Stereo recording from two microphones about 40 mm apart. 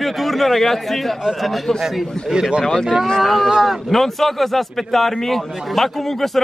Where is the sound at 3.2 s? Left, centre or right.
Centre.